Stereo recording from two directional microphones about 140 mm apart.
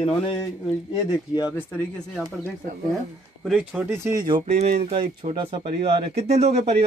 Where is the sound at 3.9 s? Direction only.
20° right (ahead or behind).